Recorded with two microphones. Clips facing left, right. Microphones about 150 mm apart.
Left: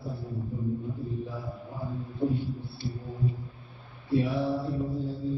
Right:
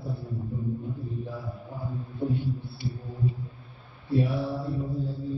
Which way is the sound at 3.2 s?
Centre (ahead or behind).